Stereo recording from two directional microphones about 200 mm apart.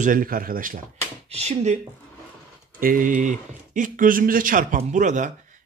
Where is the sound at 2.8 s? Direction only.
45° right (ahead or behind).